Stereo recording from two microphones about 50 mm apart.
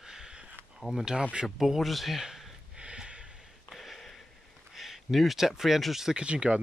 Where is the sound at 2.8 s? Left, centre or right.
Right.